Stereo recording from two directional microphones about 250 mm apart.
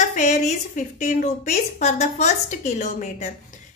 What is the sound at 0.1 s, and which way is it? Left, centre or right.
A woman's voice, left.